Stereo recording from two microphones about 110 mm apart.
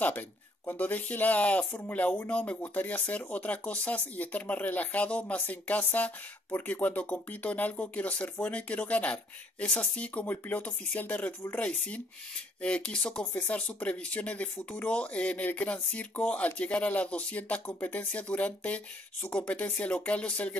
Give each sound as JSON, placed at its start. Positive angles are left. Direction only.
{"t": 0.7, "sound": "speech", "side_deg": 15}